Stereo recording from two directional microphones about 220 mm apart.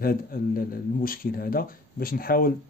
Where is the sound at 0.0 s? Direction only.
40° left (ahead or behind).